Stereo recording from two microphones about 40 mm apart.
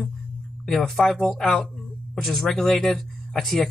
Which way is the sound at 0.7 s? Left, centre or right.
Centre.